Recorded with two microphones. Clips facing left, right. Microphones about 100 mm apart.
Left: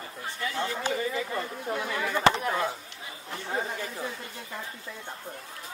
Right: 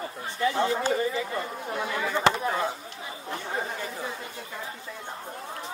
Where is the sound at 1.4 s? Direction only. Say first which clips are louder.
Right 1 dB; 10° right (ahead or behind).